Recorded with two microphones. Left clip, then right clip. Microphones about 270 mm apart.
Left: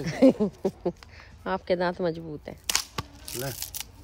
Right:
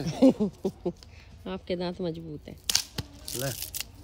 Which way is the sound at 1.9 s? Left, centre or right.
Centre.